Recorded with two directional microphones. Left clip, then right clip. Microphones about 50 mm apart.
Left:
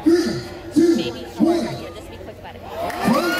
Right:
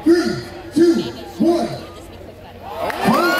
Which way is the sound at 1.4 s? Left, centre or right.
Left.